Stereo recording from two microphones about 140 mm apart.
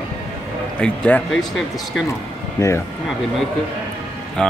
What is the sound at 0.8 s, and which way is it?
Speech, 10° left (ahead or behind).